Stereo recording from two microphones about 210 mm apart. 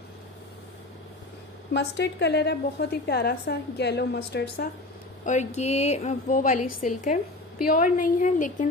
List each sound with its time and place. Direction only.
1.7 s a woman's voice: 55° left (ahead or behind)
5.2 s a woman's voice: 35° left (ahead or behind)